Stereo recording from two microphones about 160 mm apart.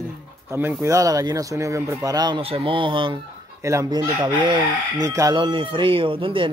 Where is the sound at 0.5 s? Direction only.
15° right (ahead or behind); by 3.2 s 30° right (ahead or behind).